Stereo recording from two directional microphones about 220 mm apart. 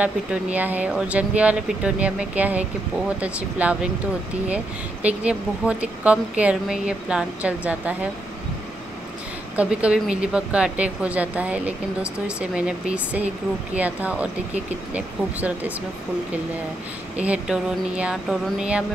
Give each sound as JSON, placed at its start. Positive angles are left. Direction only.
{"t": 0.0, "sound": "speech", "side_deg": -5}
{"t": 5.0, "sound": "speech", "side_deg": -5}
{"t": 9.6, "sound": "speech", "side_deg": -5}
{"t": 17.2, "sound": "speech", "side_deg": -5}